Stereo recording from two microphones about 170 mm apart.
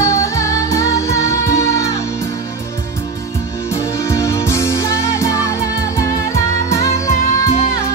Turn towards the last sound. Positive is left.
turn(degrees=20)  # may be behind; listen again after turning